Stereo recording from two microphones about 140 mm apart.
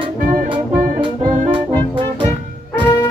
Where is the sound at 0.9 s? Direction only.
65° right (ahead or behind).